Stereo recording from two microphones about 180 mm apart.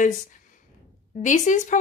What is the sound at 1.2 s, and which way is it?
Speech, 45° left (ahead or behind).